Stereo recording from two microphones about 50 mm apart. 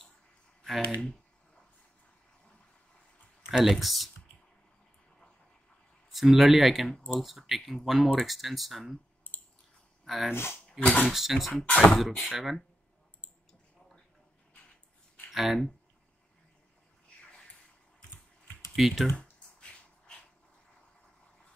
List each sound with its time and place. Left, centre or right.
3.4 s speech: centre
3.7 s speech: centre
6.0 s speech: centre
9.3 s a sound: left
10.0 s speech: centre
10.3 s speech: left
10.8 s speech: left
11.1 s speech: centre
11.7 s speech: centre
12.0 s speech: centre
15.3 s speech: centre
18.8 s speech: centre
19.6 s a sound: left